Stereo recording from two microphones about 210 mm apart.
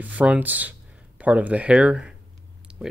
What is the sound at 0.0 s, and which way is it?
Speech, 5° right (ahead or behind).